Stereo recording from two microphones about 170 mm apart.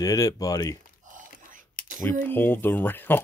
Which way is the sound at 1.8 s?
50° right (ahead or behind).